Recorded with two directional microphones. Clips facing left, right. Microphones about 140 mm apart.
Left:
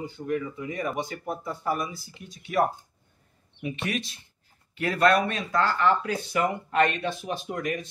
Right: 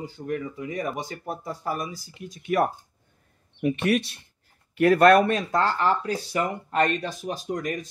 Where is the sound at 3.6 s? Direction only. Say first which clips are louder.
Right 8 dB; 50° right (ahead or behind).